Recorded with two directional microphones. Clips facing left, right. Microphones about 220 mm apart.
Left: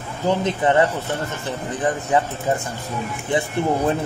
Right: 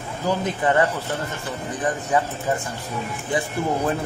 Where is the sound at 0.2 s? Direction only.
25° left (ahead or behind).